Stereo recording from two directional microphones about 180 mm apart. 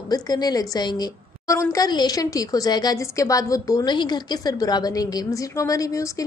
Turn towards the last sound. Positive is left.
turn(degrees=15)  # may be behind; listen again after turning